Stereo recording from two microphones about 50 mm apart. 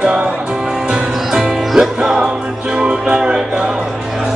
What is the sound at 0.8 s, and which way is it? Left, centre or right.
Music, centre.